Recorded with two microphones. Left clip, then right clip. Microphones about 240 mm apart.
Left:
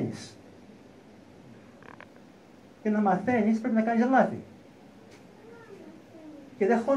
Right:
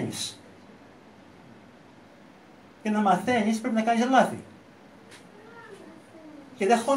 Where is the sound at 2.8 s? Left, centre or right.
Centre.